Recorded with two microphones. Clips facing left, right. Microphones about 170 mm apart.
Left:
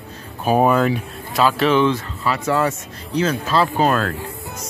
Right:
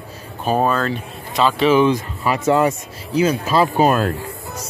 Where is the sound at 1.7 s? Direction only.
15° right (ahead or behind).